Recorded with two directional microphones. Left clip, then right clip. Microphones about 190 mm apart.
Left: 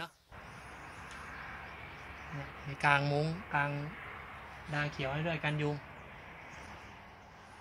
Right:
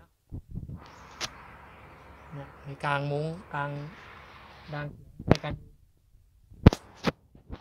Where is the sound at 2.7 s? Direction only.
55° right (ahead or behind).